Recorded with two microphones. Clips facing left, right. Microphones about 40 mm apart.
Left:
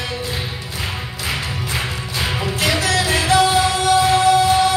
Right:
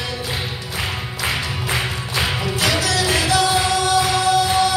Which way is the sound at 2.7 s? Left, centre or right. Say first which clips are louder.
Left 1 dB; left.